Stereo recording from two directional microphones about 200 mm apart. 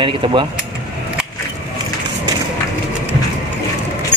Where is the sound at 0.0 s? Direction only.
25° right (ahead or behind).